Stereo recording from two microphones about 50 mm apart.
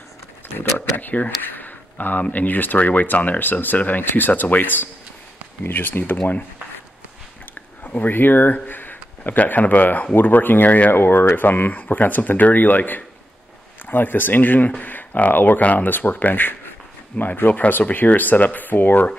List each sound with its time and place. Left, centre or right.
0.9 s speech: left
7.8 s speech: left
10.9 s speech: left